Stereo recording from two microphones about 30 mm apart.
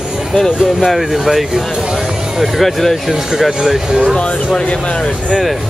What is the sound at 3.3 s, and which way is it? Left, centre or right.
Speech, centre.